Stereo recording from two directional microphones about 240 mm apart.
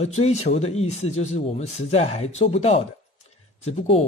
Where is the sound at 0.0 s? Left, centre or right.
Left.